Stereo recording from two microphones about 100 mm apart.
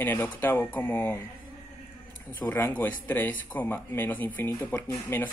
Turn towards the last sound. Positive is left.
turn(degrees=25)  # may be behind; listen again after turning